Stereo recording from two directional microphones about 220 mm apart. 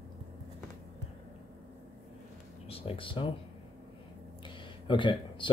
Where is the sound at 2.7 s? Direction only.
25° left (ahead or behind).